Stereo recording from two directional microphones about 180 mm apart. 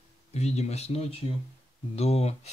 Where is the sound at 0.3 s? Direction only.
35° left (ahead or behind).